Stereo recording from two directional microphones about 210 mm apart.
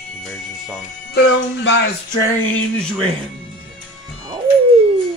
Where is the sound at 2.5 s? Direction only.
5° left (ahead or behind).